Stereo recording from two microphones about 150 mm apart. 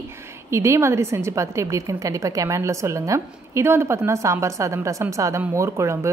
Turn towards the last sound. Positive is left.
turn(degrees=-20)  # may be behind; listen again after turning